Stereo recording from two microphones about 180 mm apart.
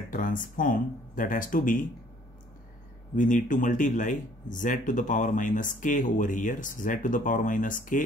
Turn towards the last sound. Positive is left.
turn(degrees=50)  # may be behind; listen again after turning